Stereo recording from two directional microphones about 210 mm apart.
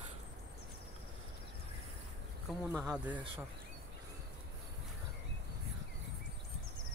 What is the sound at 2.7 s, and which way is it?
Speech, 5° right (ahead or behind).